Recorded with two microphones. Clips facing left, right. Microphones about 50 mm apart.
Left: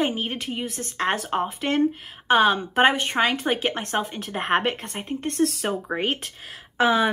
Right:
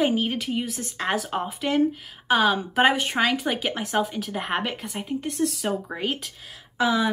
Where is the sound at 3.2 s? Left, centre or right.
Centre.